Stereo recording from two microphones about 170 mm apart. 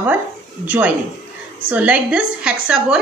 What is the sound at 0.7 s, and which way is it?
A woman's voice, 10° right (ahead or behind).